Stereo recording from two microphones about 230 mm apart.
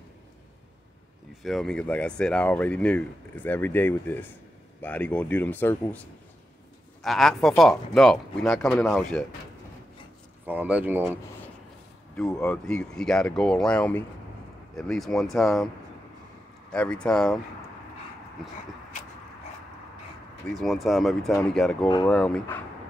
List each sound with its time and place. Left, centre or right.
1.4 s speech: centre
10.4 s speech: centre
12.2 s speech: centre
16.7 s speech: centre
20.5 s speech: centre
21.8 s speech: centre
22.1 s speech: centre